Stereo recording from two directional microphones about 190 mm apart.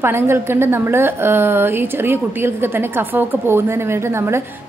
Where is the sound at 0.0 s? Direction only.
15° right (ahead or behind).